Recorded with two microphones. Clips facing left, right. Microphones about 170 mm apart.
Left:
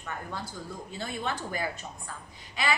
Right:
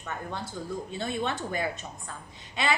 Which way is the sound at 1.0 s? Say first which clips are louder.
Right 2 dB; 25° right (ahead or behind).